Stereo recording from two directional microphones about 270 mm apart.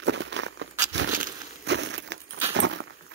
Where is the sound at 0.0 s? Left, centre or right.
Right.